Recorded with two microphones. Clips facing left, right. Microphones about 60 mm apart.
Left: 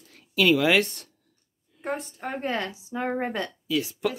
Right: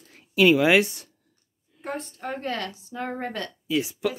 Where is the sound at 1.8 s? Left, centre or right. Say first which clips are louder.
Left 1 dB; centre.